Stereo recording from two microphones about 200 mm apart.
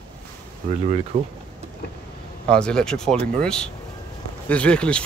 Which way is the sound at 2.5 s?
5° left (ahead or behind).